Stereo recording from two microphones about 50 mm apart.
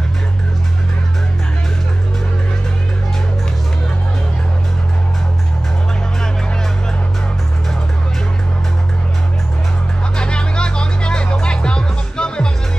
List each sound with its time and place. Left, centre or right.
10.1 s vehicle: centre
11.4 s music: centre